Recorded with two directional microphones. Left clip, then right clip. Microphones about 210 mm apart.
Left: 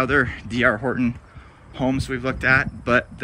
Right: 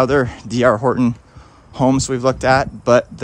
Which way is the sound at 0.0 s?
15° right (ahead or behind).